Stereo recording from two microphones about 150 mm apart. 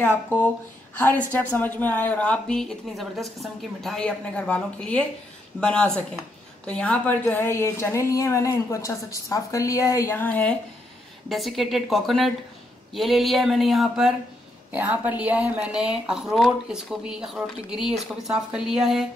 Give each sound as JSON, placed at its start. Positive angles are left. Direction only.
{"t": 0.0, "sound": "a woman's voice", "side_deg": 10}